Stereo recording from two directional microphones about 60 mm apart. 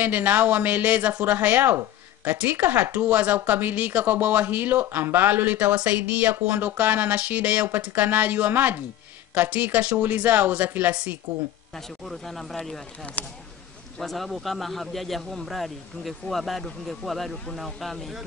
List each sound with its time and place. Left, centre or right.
0.0 s speech: right
11.7 s a man's voice: centre
13.2 s speech: left
13.9 s a man's voice: centre